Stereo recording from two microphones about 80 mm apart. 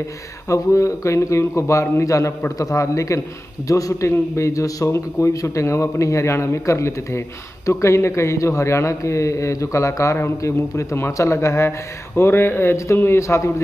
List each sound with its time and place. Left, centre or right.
0.5 s a man's voice: left